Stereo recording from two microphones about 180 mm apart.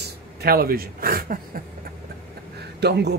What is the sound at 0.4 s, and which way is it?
Speech, 60° right (ahead or behind).